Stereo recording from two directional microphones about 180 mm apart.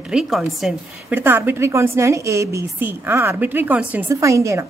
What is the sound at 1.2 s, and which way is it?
A woman's voice, 10° right (ahead or behind).